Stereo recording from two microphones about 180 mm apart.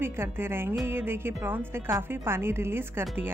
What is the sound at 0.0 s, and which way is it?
Speech, 15° right (ahead or behind).